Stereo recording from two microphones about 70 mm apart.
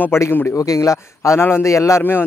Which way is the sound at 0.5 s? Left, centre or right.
Left.